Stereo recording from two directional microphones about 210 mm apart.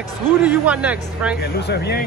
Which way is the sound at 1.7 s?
50° left (ahead or behind).